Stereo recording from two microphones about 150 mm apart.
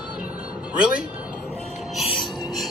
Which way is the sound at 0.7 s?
5° right (ahead or behind).